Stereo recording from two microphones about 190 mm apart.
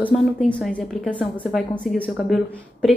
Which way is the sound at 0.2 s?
Centre (ahead or behind).